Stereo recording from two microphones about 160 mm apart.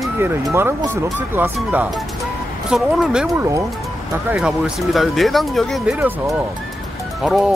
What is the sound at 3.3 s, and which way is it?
Speech, 20° right (ahead or behind).